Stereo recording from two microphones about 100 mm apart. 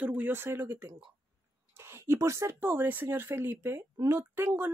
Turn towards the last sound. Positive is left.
turn(degrees=-25)  # may be behind; listen again after turning